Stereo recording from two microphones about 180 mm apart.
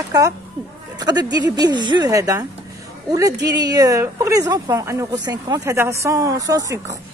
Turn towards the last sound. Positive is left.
turn(degrees=-20)  # may be behind; listen again after turning